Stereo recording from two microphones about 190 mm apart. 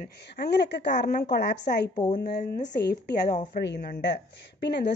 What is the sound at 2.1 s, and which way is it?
Speech, 45° left (ahead or behind).